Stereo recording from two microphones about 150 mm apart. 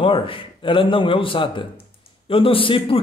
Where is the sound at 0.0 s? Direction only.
35° left (ahead or behind).